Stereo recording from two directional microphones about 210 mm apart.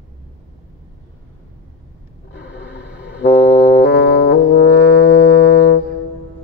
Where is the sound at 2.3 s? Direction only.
55° left (ahead or behind).